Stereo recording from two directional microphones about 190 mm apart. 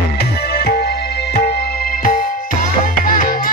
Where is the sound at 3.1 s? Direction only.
45° left (ahead or behind).